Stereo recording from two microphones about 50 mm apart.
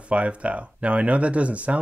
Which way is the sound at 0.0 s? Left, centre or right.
Right.